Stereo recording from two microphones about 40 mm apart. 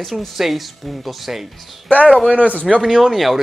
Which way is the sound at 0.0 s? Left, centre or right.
Centre.